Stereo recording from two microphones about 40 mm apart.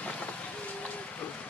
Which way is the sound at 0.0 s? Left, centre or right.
Left.